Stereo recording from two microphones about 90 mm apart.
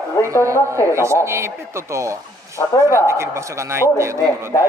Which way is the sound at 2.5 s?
35° left (ahead or behind).